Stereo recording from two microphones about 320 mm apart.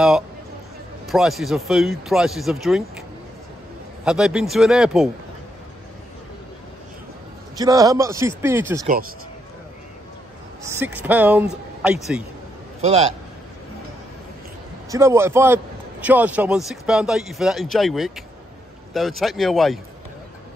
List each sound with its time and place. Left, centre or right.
1.0 s a man's voice: centre
4.0 s a man's voice: centre
7.5 s a man's voice: centre
10.6 s a man's voice: centre
12.8 s a man's voice: centre
14.9 s a man's voice: centre